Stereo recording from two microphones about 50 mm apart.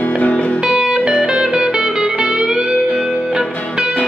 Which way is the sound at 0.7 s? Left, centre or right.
Centre.